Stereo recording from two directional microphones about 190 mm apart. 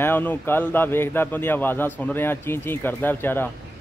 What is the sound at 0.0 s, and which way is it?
Speech, 10° left (ahead or behind).